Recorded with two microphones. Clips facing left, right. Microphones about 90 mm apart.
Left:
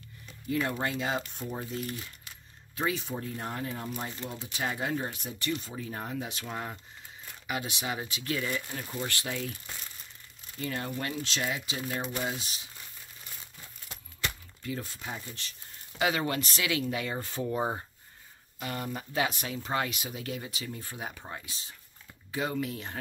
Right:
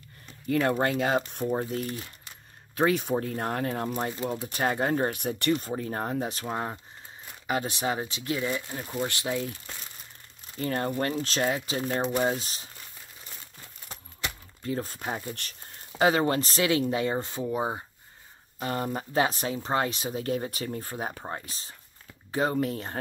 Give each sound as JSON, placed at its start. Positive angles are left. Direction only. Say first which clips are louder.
{"t": 0.5, "sound": "speech", "louder": "right 6 dB", "side_deg": -55}
{"t": 2.7, "sound": "speech", "louder": "right 8 dB", "side_deg": -60}
{"t": 10.6, "sound": "speech", "louder": "right 6 dB", "side_deg": -40}
{"t": 14.6, "sound": "speech", "louder": "right 6 dB", "side_deg": -40}
{"t": 16.0, "sound": "speech", "louder": "right 6 dB", "side_deg": -35}
{"t": 17.5, "sound": "speech", "louder": "right 1 dB", "side_deg": -10}
{"t": 18.6, "sound": "speech", "louder": "right 6 dB", "side_deg": -35}